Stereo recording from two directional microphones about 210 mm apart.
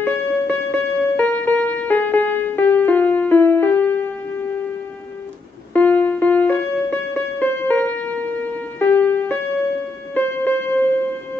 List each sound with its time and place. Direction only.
0.0 s music: 10° left (ahead or behind)
5.7 s music: 10° left (ahead or behind)